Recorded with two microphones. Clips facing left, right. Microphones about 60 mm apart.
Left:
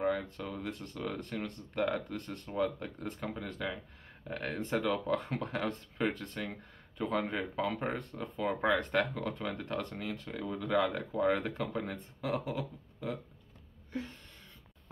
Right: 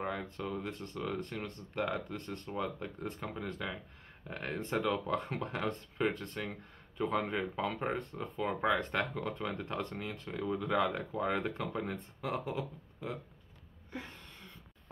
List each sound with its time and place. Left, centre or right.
0.0 s speech: centre
9.7 s speech: right
9.9 s speech: centre